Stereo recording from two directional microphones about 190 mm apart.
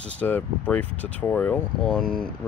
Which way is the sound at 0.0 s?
5° left (ahead or behind).